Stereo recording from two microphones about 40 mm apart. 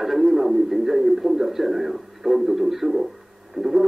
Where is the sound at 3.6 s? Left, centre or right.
Centre.